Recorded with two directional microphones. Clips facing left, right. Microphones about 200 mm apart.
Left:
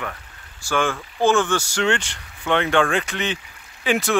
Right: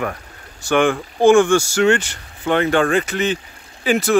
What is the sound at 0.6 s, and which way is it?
Speech, 20° right (ahead or behind).